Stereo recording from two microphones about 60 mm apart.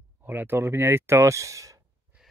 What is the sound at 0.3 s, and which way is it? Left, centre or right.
Speech, right.